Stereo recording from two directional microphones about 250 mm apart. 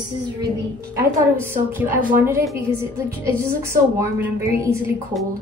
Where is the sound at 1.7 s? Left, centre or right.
Centre.